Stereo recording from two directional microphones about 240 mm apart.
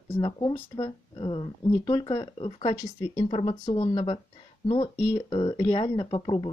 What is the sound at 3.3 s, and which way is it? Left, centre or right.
Speech, left.